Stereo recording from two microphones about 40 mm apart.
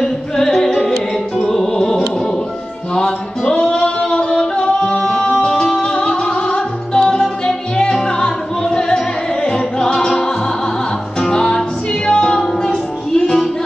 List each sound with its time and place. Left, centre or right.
0.0 s music: centre
3.4 s music: left
5.5 s music: left
5.8 s music: left